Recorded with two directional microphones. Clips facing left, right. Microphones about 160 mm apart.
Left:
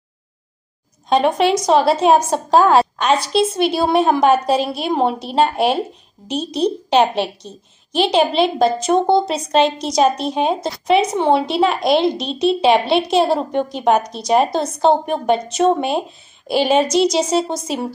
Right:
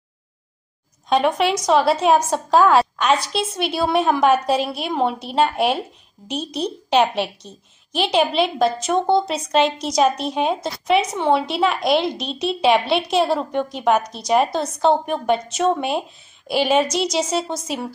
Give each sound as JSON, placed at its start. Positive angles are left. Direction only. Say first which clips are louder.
{"t": 1.0, "sound": "a woman's voice", "louder": "left 3 dB", "side_deg": 35}